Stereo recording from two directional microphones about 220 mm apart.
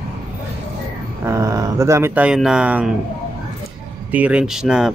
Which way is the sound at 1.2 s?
15° right (ahead or behind).